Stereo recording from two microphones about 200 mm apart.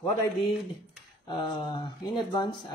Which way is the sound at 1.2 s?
25° left (ahead or behind).